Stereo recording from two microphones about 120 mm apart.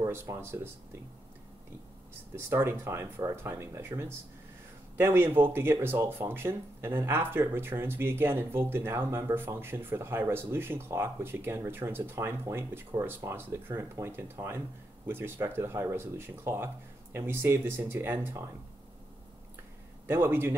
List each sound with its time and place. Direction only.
0.0 s speech: 25° right (ahead or behind)
2.3 s speech: 20° right (ahead or behind)
20.1 s speech: 20° right (ahead or behind)